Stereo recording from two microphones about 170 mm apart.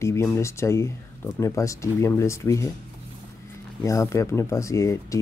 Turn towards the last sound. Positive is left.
turn(degrees=20)  # may be behind; listen again after turning